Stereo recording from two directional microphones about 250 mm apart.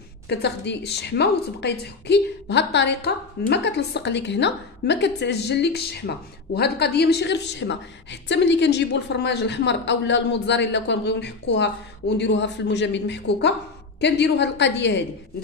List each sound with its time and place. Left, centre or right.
0.3 s a woman's voice: left